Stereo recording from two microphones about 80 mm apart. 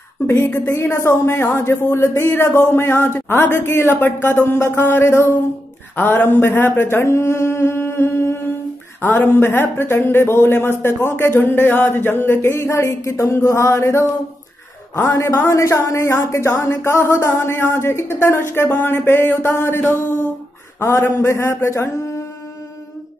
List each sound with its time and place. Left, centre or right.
0.6 s a man's voice: left
5.9 s a sound: left
9.0 s a man's voice: left